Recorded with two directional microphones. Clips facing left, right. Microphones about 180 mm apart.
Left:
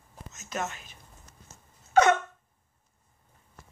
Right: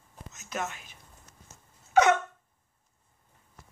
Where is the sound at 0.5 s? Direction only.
10° right (ahead or behind).